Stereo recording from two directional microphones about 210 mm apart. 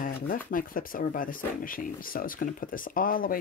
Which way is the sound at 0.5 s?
40° left (ahead or behind).